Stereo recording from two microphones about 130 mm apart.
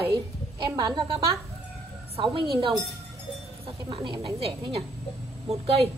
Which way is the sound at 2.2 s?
40° right (ahead or behind).